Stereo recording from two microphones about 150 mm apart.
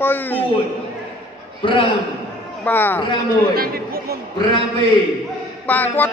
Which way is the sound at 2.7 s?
15° left (ahead or behind).